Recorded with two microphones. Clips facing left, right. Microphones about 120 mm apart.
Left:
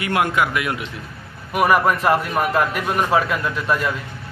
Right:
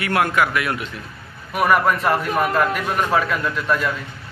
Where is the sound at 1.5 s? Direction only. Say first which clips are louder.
Left 1 dB; 5° left (ahead or behind).